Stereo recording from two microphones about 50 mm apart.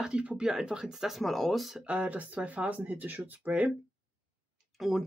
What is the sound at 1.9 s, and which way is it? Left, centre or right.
Speech, right.